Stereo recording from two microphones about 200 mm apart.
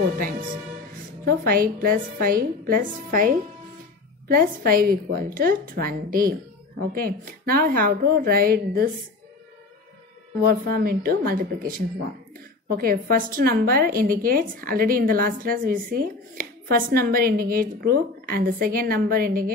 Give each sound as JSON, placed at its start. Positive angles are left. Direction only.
{"t": 1.2, "sound": "a woman's voice", "side_deg": -45}
{"t": 10.4, "sound": "a woman's voice", "side_deg": -50}